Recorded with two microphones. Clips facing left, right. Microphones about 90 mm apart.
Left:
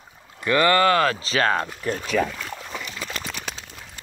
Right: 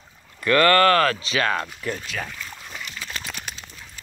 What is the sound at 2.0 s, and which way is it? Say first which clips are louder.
Speech: left 9 dB; 80° left.